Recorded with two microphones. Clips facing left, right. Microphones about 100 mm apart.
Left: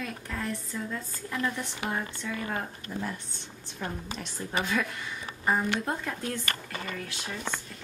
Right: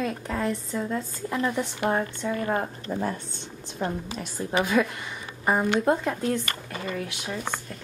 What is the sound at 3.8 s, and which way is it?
Speech, 25° right (ahead or behind).